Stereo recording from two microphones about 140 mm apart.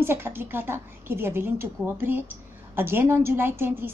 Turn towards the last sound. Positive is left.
turn(degrees=-15)  # may be behind; listen again after turning